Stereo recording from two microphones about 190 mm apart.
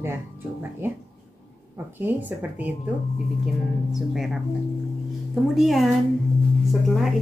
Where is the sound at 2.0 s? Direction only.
10° right (ahead or behind).